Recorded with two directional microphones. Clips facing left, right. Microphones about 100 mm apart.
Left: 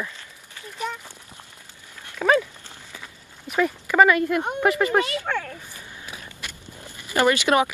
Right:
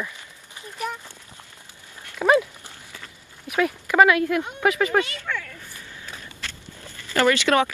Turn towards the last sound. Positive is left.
turn(degrees=15)  # may be behind; listen again after turning